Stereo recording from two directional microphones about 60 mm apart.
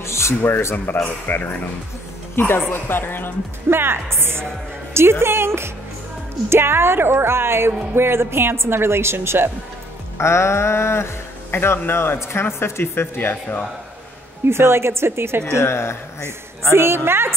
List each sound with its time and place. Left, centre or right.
0.0 s music: left
1.2 s speech: left
3.7 s speech: right
10.1 s music: left
11.5 s speech: left
14.4 s speech: right
15.5 s music: left
16.7 s speech: right